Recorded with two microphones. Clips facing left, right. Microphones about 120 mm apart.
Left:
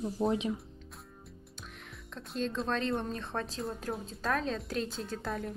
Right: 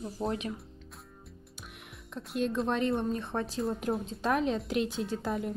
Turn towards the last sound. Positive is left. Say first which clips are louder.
# right 5 dB
turn(degrees=-15)  # may be behind; listen again after turning